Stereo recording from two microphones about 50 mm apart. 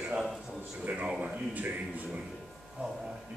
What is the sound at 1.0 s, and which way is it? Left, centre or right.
Speech, centre.